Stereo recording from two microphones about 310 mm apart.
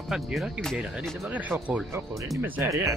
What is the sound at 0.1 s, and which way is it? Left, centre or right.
Speech, centre.